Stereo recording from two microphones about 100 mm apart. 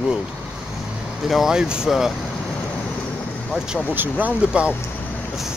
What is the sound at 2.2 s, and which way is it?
Vehicle, 5° left (ahead or behind).